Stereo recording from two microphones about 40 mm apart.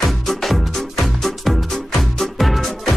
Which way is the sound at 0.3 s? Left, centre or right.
Centre.